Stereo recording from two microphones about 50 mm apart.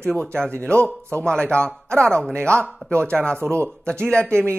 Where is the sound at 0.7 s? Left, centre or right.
Right.